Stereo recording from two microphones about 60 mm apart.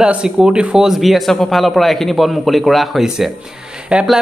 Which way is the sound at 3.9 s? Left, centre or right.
Centre.